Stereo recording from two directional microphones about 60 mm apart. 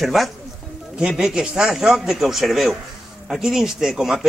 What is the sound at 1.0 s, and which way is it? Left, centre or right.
A man's voice, centre.